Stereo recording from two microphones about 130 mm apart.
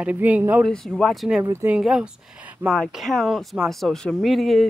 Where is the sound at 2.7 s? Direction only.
Centre (ahead or behind).